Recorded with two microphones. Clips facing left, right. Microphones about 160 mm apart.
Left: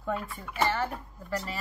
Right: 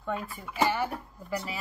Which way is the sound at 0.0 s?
Centre (ahead or behind).